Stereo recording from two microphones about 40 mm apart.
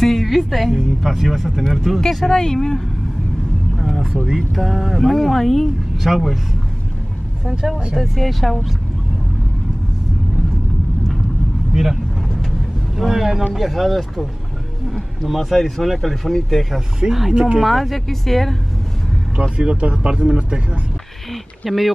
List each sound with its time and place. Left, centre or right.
0.0 s music: centre
0.8 s speech: centre
3.7 s vehicle: centre
4.4 s speech: centre
5.9 s speech: centre
7.6 s speech: centre
8.0 s speech: centre
11.7 s speech: centre
15.2 s speech: centre
17.3 s speech: right
17.6 s speech: centre
19.5 s speech: right
21.6 s speech: centre